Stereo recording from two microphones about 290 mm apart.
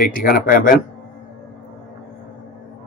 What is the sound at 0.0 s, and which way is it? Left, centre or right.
Speech, left.